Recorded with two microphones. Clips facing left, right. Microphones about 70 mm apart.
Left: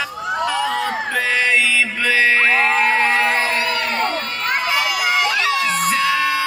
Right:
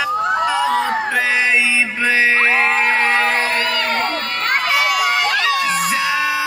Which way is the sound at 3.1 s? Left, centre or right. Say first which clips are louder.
Right 1 dB; right.